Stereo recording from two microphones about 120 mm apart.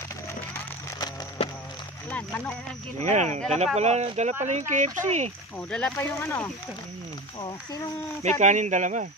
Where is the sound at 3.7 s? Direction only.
65° right (ahead or behind).